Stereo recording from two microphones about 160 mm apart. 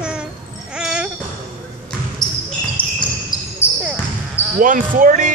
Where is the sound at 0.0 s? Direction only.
5° right (ahead or behind).